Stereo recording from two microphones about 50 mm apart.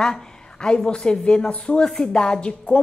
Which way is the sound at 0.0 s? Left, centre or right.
Centre.